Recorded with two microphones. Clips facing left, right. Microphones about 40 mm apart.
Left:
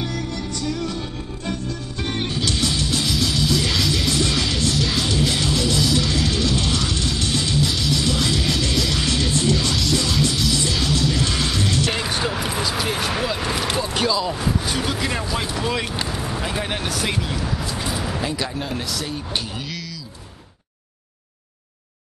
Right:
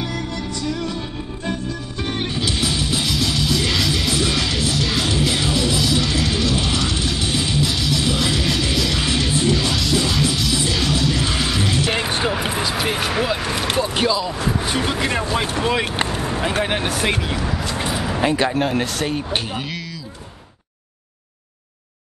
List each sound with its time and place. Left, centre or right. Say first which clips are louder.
0.0 s music: right 1 dB; centre
3.1 s music: left 1 dB; centre
7.6 s music: right 1 dB; centre
11.9 s basketball bounce: right 3 dB; right
12.9 s a sound: right 3 dB; centre
14.4 s vehicle: right 2 dB; right
16.6 s a sound: right 4 dB; right
17.4 s speech: right 2 dB; centre
17.8 s a sound: right 3 dB; centre
18.2 s speech: right 7 dB; right